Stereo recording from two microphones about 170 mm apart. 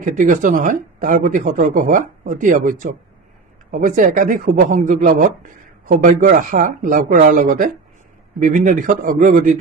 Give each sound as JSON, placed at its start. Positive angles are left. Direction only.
{"t": 0.0, "sound": "speech", "side_deg": -50}